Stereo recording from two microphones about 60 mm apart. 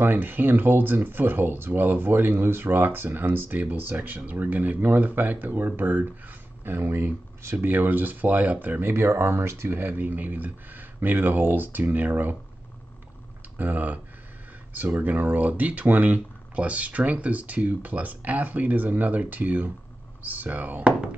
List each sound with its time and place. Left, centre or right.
0.0 s speech: right
7.6 s speech: right
8.9 s speech: right
13.6 s speech: right